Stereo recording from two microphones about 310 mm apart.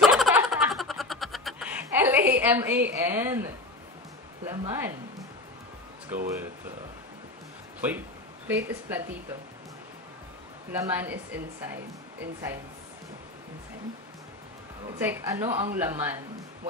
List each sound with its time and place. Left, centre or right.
0.0 s snicker: centre
2.3 s a woman's voice: centre
6.1 s speech: centre
8.5 s a woman's voice: centre
10.7 s a woman's voice: centre
15.0 s a woman's voice: centre